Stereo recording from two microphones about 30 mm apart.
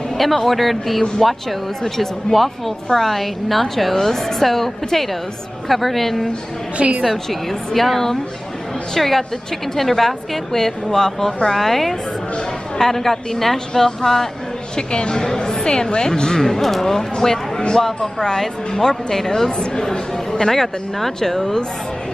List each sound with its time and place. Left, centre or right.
0.2 s a woman's voice: centre
6.8 s a woman's voice: right
7.2 s speech: centre
14.8 s speech: left
18.8 s speech: centre
19.6 s speech: left
20.5 s speech: centre